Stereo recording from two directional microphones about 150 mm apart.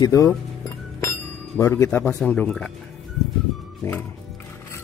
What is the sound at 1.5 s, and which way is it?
Speech, 20° left (ahead or behind).